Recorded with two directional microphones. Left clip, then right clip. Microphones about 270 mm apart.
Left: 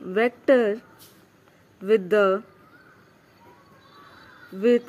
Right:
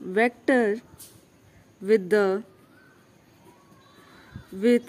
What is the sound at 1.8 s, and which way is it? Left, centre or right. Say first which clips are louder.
Speech: left 2 dB; centre.